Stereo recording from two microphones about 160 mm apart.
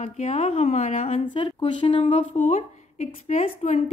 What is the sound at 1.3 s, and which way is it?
A woman's voice, 30° left (ahead or behind).